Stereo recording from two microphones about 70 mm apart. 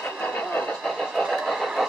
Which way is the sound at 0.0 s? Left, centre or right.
Left.